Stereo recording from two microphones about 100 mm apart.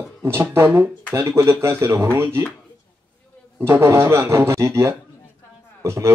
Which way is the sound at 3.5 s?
20° right (ahead or behind).